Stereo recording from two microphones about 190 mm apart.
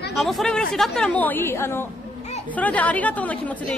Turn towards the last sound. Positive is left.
turn(degrees=5)  # may be behind; listen again after turning